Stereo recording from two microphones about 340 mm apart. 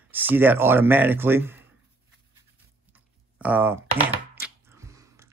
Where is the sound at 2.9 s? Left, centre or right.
Centre.